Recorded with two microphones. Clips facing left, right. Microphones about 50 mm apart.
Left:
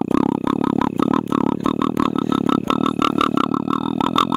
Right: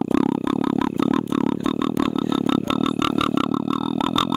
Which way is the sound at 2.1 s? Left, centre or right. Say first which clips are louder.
Left 2 dB; left.